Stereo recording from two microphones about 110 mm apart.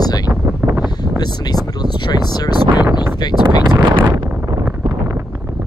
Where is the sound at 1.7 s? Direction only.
40° left (ahead or behind).